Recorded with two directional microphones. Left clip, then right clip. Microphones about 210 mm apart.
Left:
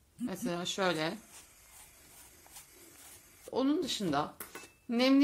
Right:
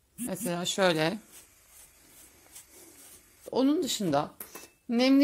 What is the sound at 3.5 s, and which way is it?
Speech, 40° right (ahead or behind).